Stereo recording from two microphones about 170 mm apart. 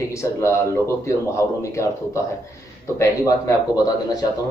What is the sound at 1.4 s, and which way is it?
Speech, 15° left (ahead or behind).